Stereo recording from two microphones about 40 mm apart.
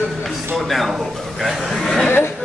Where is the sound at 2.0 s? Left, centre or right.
Left.